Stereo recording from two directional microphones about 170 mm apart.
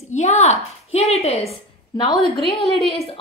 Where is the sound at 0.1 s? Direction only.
40° left (ahead or behind).